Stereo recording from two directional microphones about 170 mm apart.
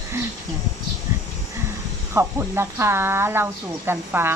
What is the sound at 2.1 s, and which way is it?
Speech, 15° right (ahead or behind).